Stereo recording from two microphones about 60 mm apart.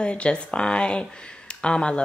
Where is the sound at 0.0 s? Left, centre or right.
Centre.